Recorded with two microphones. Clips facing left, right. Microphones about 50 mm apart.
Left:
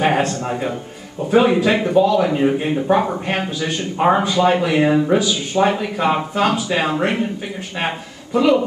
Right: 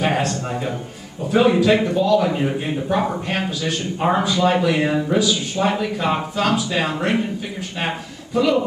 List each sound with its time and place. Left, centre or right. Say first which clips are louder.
0.0 s a man's voice: left 3 dB; centre
5.5 s speech: left 6 dB; left
5.9 s a man's voice: left 3 dB; centre